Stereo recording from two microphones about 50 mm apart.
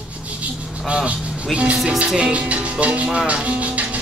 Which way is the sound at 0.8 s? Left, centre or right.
Right.